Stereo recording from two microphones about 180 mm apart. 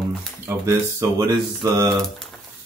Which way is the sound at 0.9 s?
25° right (ahead or behind).